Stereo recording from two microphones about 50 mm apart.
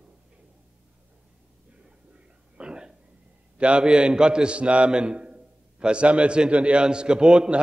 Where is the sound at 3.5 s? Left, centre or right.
Right.